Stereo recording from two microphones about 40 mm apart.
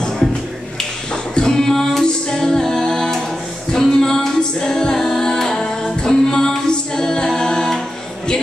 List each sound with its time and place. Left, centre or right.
1.3 s music: centre